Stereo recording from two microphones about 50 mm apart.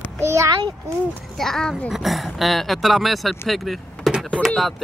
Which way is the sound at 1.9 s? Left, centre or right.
Centre.